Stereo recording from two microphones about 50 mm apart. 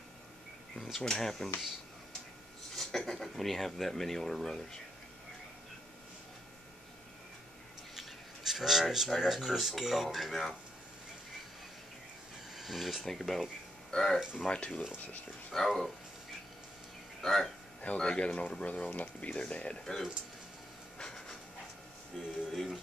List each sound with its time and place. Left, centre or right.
0.9 s speech: centre
2.7 s a sound: centre
3.1 s speech: centre
7.9 s speech: centre
12.5 s speech: centre
15.5 s speech: centre
17.2 s speech: centre
17.8 s speech: centre
21.0 s hiss: centre
22.1 s speech: centre